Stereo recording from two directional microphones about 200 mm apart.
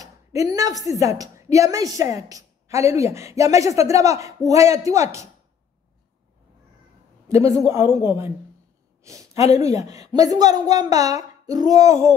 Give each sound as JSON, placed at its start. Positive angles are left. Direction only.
{"t": 0.0, "sound": "a woman's voice", "side_deg": -15}
{"t": 7.2, "sound": "a woman's voice", "side_deg": -15}